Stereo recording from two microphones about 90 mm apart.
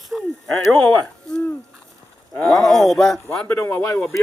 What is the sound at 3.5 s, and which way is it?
Speech, 25° left (ahead or behind).